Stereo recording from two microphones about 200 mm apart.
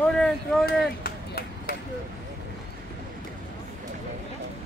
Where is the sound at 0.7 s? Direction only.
50° left (ahead or behind).